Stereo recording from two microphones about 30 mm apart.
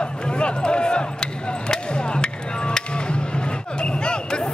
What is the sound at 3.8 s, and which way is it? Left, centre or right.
Basketball bounce, left.